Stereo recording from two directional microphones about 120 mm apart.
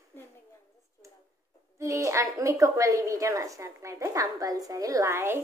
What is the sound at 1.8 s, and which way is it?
A woman's voice, 25° right (ahead or behind).